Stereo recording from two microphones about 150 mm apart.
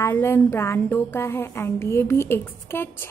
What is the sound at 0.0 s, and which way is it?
A woman's voice, 15° left (ahead or behind).